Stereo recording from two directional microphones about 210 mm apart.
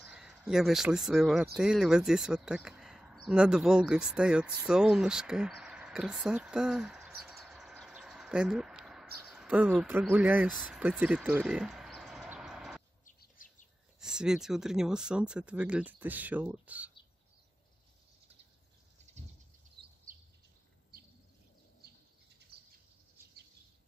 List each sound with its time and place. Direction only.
0.0 s speech: centre (ahead or behind)
12.3 s vehicle: 5° right (ahead or behind)
13.0 s bird: 40° left (ahead or behind)
13.9 s speech: 5° right (ahead or behind)
20.1 s a sound: 40° right (ahead or behind)